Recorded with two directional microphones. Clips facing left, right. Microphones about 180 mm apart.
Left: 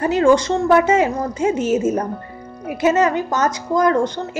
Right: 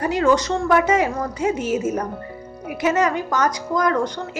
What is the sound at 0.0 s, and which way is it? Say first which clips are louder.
A woman's voice: left 4 dB; 25° left (ahead or behind).